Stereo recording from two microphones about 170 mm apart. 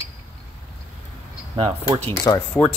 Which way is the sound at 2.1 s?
15° left (ahead or behind).